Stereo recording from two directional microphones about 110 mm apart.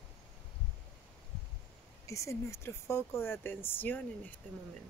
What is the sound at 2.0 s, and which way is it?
Speech, 25° left (ahead or behind).